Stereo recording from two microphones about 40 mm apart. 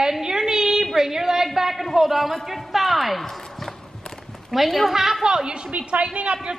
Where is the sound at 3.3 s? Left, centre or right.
Centre.